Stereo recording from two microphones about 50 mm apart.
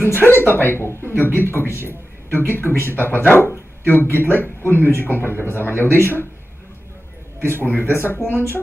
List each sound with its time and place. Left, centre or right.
0.0 s a man's voice: left
7.4 s a man's voice: left